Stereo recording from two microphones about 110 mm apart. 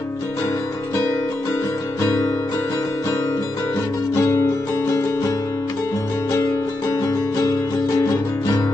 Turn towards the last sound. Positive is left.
turn(degrees=30)  # may be behind; listen again after turning